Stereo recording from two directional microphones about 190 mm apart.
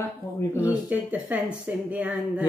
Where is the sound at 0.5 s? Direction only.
10° right (ahead or behind).